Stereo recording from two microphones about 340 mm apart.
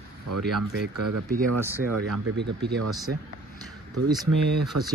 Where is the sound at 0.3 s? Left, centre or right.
Right.